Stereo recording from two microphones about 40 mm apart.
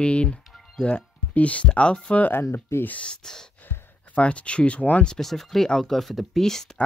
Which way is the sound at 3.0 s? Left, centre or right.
Centre.